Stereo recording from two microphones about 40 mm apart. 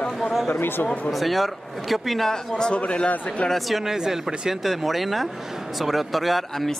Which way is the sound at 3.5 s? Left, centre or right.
Centre.